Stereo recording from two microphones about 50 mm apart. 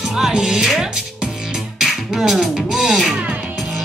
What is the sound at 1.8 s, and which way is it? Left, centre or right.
Beatboxing, centre.